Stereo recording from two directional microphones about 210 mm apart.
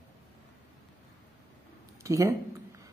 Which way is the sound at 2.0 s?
15° right (ahead or behind).